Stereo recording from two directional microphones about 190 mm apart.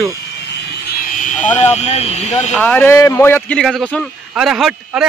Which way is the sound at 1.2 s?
40° left (ahead or behind).